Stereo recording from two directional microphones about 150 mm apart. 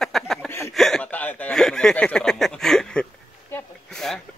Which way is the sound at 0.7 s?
5° left (ahead or behind).